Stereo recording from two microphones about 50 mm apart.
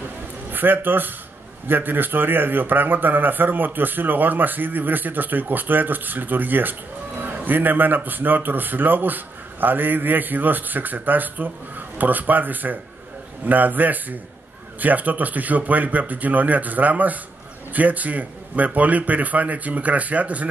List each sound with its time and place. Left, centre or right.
0.5 s a man's voice: right